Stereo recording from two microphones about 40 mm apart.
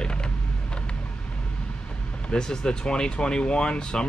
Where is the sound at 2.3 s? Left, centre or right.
Left.